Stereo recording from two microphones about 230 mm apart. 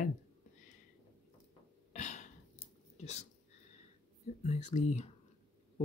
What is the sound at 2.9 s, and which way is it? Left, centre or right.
Speech, left.